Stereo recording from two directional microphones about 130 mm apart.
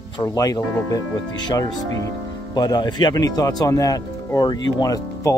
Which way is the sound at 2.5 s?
35° left (ahead or behind).